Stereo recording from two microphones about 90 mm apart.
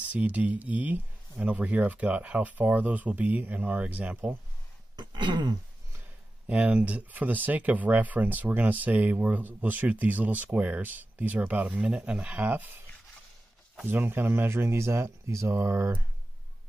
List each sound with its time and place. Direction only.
0.0 s speech: 15° right (ahead or behind)
4.9 s throat clearing: 55° right (ahead or behind)
6.4 s speech: 15° right (ahead or behind)
13.8 s speech: 25° right (ahead or behind)